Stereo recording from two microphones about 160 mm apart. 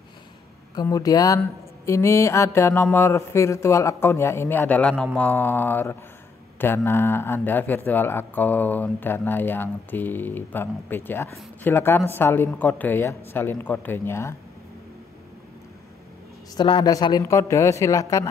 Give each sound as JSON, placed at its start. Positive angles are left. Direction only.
{"t": 0.7, "sound": "speech", "side_deg": 20}
{"t": 16.5, "sound": "speech", "side_deg": 30}